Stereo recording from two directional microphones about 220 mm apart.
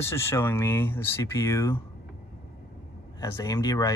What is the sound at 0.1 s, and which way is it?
Speech, 10° left (ahead or behind).